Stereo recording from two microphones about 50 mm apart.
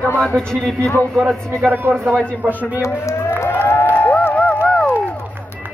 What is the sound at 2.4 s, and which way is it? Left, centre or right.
Speech, right.